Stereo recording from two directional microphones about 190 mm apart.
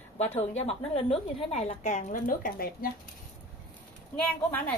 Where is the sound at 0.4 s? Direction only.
30° left (ahead or behind); by 2.9 s 50° left (ahead or behind).